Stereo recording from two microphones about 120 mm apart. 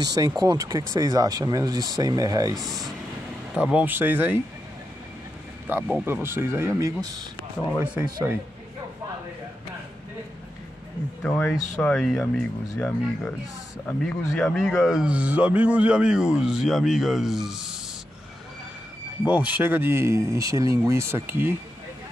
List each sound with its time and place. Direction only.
0.0 s speech: 30° right (ahead or behind)
3.5 s speech: 10° right (ahead or behind)
5.7 s speech: 15° right (ahead or behind)
8.0 s speech: 20° right (ahead or behind)
11.2 s a man's voice: 15° left (ahead or behind); by 17.7 s 5° right (ahead or behind)
19.2 s speech: 15° right (ahead or behind)